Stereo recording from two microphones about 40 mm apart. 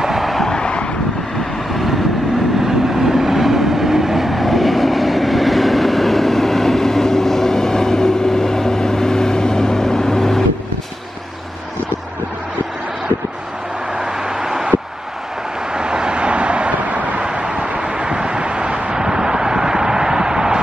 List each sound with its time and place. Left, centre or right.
0.0 s a sound: centre
0.4 s vehicle: centre
1.7 s vehicle: centre
2.6 s train: centre
13.9 s vehicle: centre
15.7 s vehicle: centre; by 17.2 s right
17.2 s vehicle: right